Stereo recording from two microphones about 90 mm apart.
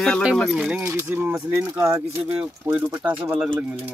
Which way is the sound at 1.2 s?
30° right (ahead or behind).